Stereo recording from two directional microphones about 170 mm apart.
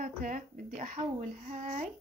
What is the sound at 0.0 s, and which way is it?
Speech, 50° right (ahead or behind).